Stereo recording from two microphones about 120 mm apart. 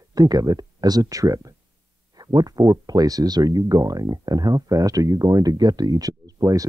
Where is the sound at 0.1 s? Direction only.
30° right (ahead or behind).